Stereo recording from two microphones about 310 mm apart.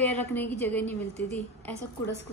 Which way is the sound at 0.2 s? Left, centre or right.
Centre.